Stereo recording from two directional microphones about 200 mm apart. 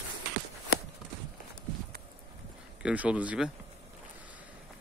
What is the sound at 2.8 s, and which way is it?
Speech, 5° right (ahead or behind).